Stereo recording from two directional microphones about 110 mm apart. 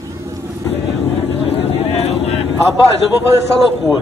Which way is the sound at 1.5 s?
70° left (ahead or behind).